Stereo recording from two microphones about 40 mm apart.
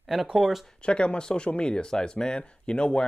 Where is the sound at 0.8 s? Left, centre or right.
Left.